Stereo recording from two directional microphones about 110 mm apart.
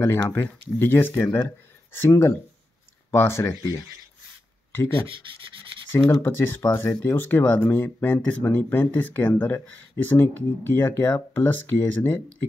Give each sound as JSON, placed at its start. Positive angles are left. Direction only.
{"t": 0.0, "sound": "speech", "side_deg": 20}
{"t": 5.0, "sound": "rub", "side_deg": -50}
{"t": 6.0, "sound": "speech", "side_deg": 20}